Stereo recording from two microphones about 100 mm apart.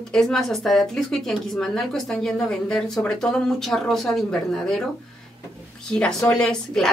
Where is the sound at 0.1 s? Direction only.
5° left (ahead or behind).